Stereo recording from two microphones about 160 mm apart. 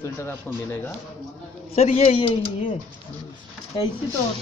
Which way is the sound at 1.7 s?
40° left (ahead or behind).